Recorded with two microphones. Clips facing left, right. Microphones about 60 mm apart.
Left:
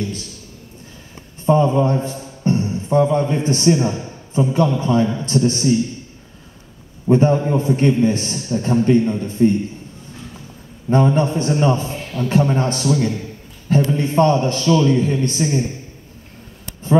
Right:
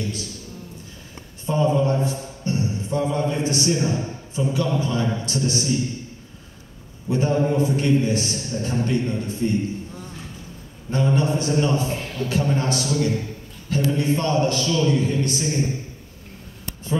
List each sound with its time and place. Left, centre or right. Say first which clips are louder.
1.4 s speech: left 5 dB; left
7.1 s a man's voice: left 6 dB; left
10.9 s a man's voice: left 5 dB; left